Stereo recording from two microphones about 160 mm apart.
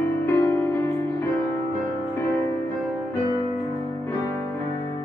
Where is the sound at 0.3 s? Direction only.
15° left (ahead or behind).